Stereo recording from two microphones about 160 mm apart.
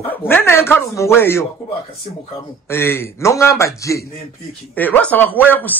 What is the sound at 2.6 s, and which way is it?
Speech, 15° left (ahead or behind).